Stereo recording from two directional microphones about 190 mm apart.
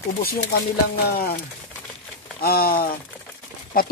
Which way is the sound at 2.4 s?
50° left (ahead or behind).